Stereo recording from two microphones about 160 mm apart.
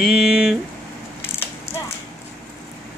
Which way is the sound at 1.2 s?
15° left (ahead or behind).